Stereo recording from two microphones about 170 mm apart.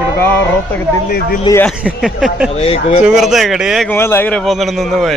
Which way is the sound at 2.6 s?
40° left (ahead or behind).